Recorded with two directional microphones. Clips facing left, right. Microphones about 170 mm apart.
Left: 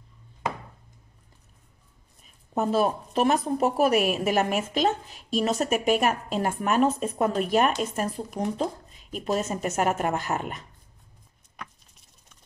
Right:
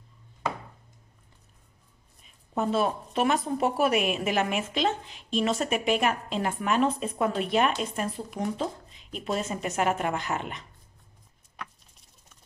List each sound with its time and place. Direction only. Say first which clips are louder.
2.5 s a woman's voice: left 2 dB; 40° left (ahead or behind)